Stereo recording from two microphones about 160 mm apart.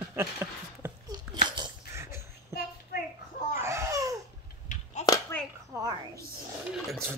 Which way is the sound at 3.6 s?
20° right (ahead or behind).